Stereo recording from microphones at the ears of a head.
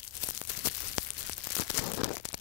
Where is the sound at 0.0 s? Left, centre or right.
Left.